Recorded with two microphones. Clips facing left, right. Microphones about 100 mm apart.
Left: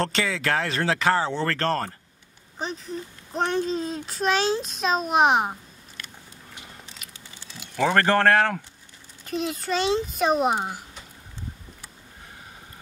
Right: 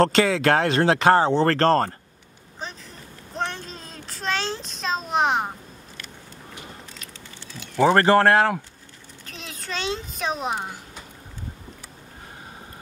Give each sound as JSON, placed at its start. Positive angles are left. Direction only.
{"t": 0.0, "sound": "speech", "side_deg": -45}
{"t": 0.3, "sound": "speech", "side_deg": -60}
{"t": 1.3, "sound": "speech", "side_deg": -35}
{"t": 3.3, "sound": "a child's voice", "side_deg": 20}
{"t": 7.7, "sound": "speech", "side_deg": -15}
{"t": 9.2, "sound": "a child's voice", "side_deg": 5}